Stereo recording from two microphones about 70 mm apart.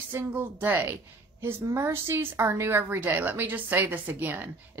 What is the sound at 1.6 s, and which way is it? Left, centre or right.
A woman's voice, right.